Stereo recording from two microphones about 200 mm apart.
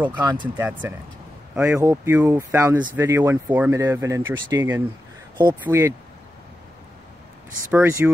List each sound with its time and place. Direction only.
0.2 s speech: 20° right (ahead or behind)
0.6 s speech: 10° right (ahead or behind)
7.7 s speech: 10° right (ahead or behind)